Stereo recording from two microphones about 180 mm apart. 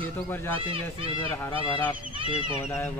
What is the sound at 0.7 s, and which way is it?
Speech, 30° right (ahead or behind).